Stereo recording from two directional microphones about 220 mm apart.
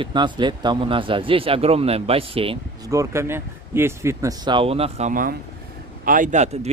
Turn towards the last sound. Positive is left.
turn(degrees=-30)  # may be behind; listen again after turning